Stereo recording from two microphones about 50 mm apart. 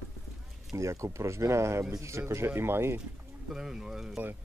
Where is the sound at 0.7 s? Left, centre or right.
Right.